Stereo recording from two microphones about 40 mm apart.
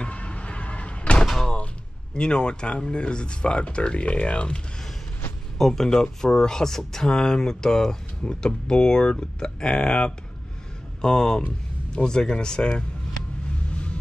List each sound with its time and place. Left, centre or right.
0.0 s vehicle: left
1.2 s door: centre
2.1 s speech: left
5.7 s speech: centre